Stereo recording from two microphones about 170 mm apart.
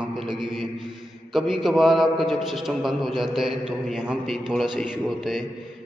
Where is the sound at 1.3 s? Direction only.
Centre (ahead or behind).